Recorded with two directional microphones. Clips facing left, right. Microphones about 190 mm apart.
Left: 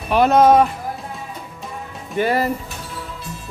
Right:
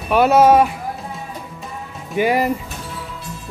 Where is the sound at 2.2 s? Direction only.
10° right (ahead or behind).